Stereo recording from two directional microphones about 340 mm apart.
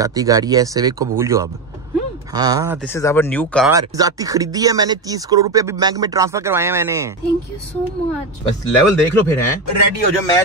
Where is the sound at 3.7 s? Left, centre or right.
Centre.